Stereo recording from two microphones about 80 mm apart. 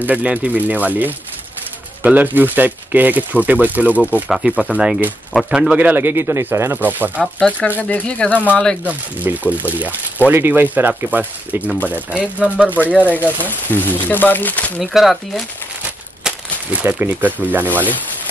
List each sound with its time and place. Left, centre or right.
0.0 s speech: centre
5.8 s speech: right
7.3 s speech: centre
8.8 s speech: centre
13.1 s speech: left
14.8 s speech: centre
16.3 s crumpling: centre
17.1 s speech: right